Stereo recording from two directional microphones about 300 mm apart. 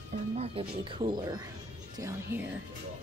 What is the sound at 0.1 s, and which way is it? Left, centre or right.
Speech, centre.